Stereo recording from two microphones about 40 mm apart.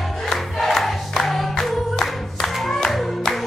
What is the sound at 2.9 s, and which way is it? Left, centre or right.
Music, centre.